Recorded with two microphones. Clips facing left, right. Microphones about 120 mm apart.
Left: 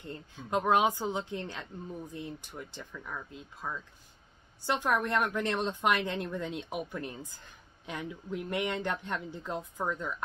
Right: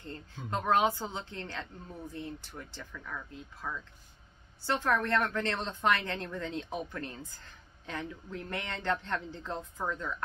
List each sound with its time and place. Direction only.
0.0 s a woman's voice: 15° left (ahead or behind)